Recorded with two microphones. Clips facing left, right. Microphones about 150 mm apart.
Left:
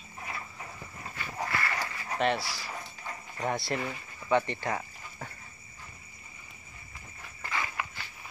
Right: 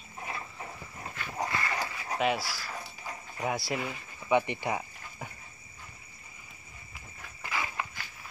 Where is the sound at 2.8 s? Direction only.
5° right (ahead or behind).